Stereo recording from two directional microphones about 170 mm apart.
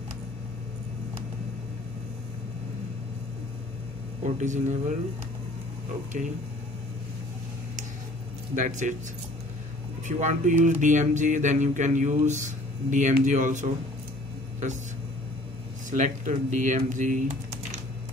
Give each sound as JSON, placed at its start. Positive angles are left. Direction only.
{"t": 4.2, "sound": "speech", "side_deg": -45}
{"t": 6.1, "sound": "speech", "side_deg": -50}
{"t": 8.5, "sound": "speech", "side_deg": -45}
{"t": 10.0, "sound": "speech", "side_deg": -45}
{"t": 15.9, "sound": "speech", "side_deg": -45}